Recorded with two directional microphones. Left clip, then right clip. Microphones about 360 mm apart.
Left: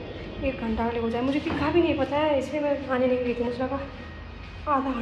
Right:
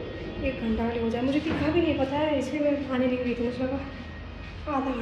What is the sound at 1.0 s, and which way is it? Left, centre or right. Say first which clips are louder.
A woman's voice: even; centre.